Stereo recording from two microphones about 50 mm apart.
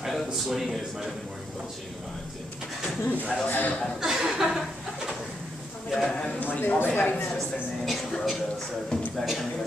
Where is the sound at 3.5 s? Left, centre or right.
Left.